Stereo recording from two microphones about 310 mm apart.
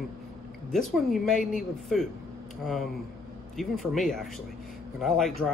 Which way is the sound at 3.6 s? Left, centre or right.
Centre.